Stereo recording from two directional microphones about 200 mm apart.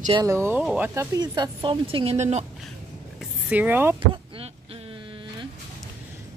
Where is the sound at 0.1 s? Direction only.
15° right (ahead or behind); by 2.4 s 35° right (ahead or behind).